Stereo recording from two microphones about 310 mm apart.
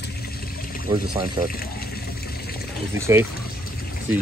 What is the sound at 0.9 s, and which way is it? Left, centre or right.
Speech, centre.